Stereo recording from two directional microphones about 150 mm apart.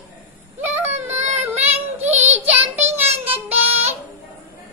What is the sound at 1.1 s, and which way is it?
Child singing, 50° right (ahead or behind).